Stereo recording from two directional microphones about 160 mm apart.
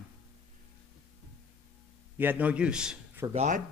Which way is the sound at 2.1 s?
10° right (ahead or behind).